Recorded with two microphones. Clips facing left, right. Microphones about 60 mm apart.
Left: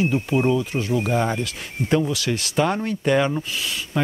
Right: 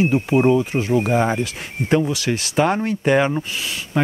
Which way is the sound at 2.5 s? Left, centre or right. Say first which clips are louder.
Right 4 dB; centre.